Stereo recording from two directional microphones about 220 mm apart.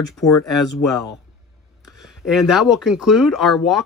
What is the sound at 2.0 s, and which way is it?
Speech, centre (ahead or behind).